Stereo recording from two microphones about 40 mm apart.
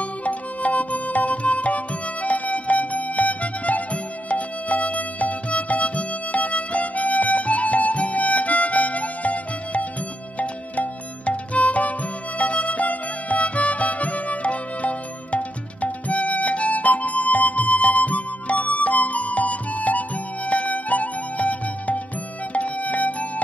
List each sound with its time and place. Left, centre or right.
0.0 s music: left